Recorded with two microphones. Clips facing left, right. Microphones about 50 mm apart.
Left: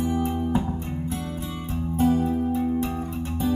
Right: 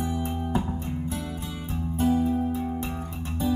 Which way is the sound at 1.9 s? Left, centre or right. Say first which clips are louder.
Left 2 dB; left.